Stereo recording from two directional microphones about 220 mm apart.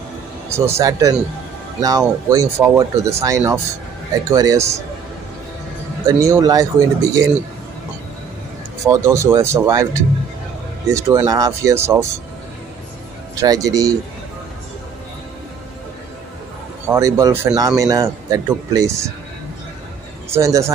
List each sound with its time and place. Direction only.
0.5 s a man's voice: 10° right (ahead or behind)
6.0 s a man's voice: 15° right (ahead or behind)
8.8 s a man's voice: 15° right (ahead or behind)
10.9 s a man's voice: 15° right (ahead or behind)
13.4 s a man's voice: 15° right (ahead or behind)
16.8 s a man's voice: 15° right (ahead or behind)
20.2 s speech: 15° right (ahead or behind)